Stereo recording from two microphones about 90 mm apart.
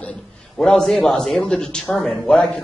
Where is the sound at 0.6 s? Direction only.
5° left (ahead or behind).